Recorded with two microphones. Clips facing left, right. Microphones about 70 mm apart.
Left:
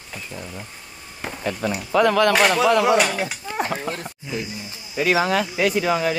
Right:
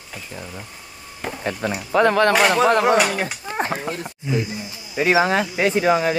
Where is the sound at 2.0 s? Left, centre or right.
Right.